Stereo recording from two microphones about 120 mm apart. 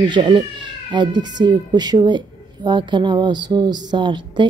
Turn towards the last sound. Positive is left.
turn(degrees=-40)  # may be behind; listen again after turning